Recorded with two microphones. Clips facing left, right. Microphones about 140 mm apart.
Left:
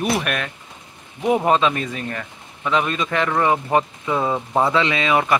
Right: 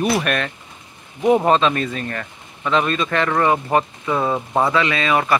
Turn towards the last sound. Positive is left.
turn(degrees=15)  # may be behind; listen again after turning